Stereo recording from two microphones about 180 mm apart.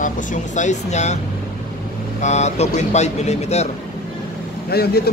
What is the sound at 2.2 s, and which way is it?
Speech, 40° left (ahead or behind).